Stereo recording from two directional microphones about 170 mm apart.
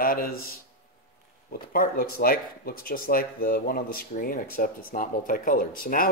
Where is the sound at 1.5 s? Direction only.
60° left (ahead or behind).